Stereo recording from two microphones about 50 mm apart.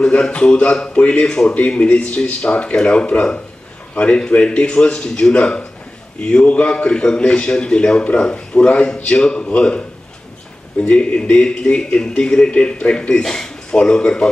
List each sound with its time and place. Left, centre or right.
0.0 s speech: left